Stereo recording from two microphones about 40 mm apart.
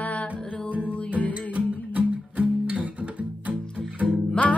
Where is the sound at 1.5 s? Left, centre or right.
Right.